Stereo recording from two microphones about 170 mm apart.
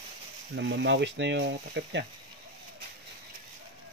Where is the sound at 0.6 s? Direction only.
90° right.